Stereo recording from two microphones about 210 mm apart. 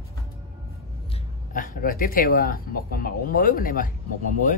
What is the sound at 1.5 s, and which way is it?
Speech, 40° left (ahead or behind).